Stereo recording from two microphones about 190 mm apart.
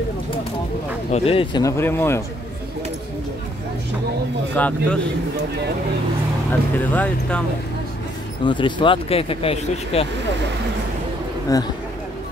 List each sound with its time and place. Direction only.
1.1 s speech: 30° left (ahead or behind)
1.6 s speech: 15° left (ahead or behind)
4.6 s speech: 10° left (ahead or behind)
6.8 s speech: 10° left (ahead or behind)
8.5 s speech: 25° left (ahead or behind)
11.4 s speech: 20° left (ahead or behind)